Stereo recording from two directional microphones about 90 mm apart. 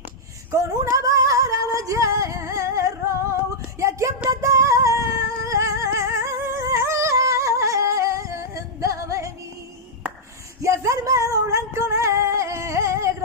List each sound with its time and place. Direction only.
0.5 s a sound: 40° right (ahead or behind)
4.4 s singing: 35° right (ahead or behind)
10.6 s music: 35° right (ahead or behind)